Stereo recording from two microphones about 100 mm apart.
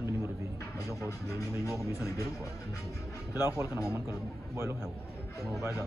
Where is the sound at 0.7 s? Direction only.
35° left (ahead or behind).